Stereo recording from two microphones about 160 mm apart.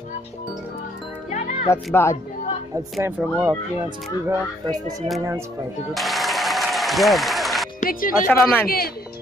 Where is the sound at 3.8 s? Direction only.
25° right (ahead or behind).